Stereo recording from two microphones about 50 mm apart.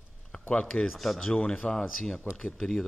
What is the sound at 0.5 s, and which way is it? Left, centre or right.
Speech, centre.